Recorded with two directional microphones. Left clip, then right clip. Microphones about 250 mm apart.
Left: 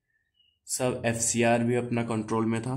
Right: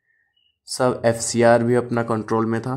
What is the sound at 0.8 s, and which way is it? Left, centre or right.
Speech, centre.